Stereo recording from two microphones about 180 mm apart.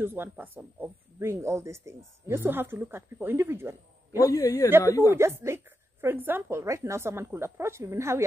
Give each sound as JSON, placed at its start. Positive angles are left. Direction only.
{"t": 0.0, "sound": "speech", "side_deg": -10}
{"t": 4.2, "sound": "a man's voice", "side_deg": 20}
{"t": 5.1, "sound": "speech", "side_deg": -15}